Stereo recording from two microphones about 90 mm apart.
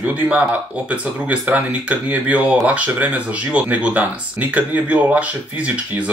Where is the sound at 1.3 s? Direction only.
15° right (ahead or behind).